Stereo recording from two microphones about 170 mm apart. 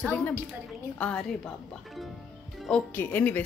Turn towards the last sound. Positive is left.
turn(degrees=10)  # may be behind; listen again after turning